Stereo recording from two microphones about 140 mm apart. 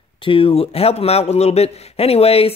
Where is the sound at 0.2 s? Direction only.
40° left (ahead or behind).